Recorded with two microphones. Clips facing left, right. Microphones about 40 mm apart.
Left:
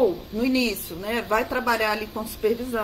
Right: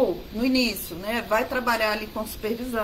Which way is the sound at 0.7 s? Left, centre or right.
Left.